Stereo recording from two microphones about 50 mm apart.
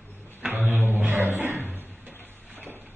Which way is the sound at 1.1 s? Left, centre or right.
Right.